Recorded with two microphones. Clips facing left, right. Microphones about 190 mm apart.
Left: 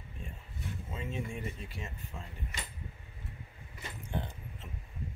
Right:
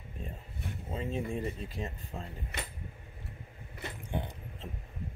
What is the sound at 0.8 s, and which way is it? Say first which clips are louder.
Speech: right 5 dB; 35° right (ahead or behind).